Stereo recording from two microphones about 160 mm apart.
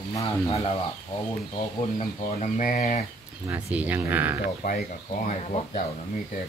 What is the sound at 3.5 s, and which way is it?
Speech, 10° right (ahead or behind).